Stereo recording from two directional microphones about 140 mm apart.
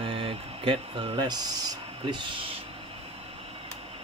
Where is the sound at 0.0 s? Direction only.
40° right (ahead or behind).